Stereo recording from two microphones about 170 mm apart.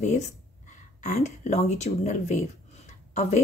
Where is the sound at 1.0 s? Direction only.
45° left (ahead or behind).